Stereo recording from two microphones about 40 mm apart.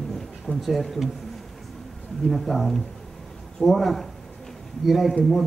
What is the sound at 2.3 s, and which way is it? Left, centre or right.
A man's voice, centre.